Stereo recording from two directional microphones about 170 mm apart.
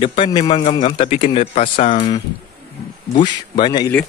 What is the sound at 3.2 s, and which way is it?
Speech, 25° left (ahead or behind).